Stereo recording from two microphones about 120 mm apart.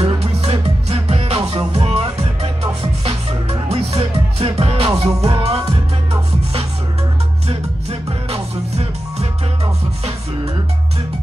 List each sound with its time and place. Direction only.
0.0 s music: 55° right (ahead or behind)
7.4 s music: 55° right (ahead or behind)